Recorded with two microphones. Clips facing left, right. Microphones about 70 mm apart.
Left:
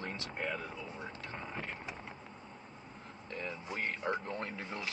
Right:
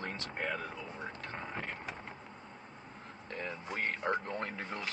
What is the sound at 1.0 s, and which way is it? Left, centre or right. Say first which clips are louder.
Vehicle: right 2 dB; right.